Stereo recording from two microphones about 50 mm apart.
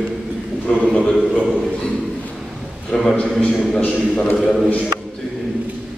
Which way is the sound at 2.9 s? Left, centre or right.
Centre.